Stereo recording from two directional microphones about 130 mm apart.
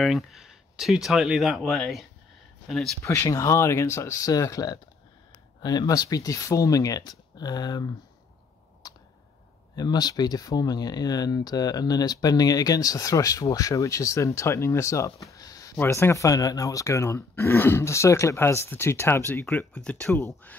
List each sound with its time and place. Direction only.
0.0 s speech: centre (ahead or behind)
3.0 s speech: 20° left (ahead or behind)
8.8 s a sound: 30° left (ahead or behind)
9.8 s speech: 30° left (ahead or behind)
19.4 s speech: 5° left (ahead or behind)
20.1 s speech: 20° left (ahead or behind)